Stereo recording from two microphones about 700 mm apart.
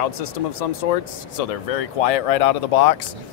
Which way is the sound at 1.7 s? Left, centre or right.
Left.